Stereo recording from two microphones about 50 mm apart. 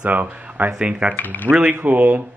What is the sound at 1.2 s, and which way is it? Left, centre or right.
Speech, left.